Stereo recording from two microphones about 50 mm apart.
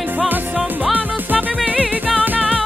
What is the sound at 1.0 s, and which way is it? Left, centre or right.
Music, right.